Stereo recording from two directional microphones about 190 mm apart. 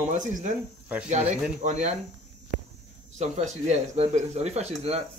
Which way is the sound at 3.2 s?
35° right (ahead or behind).